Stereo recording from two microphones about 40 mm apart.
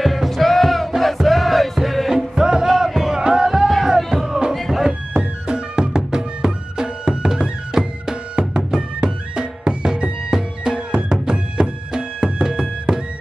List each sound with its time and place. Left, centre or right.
0.0 s music: centre
2.0 s music: centre
4.6 s a sound: centre
5.1 s music: right